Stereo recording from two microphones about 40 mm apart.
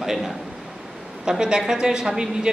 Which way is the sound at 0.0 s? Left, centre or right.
Centre.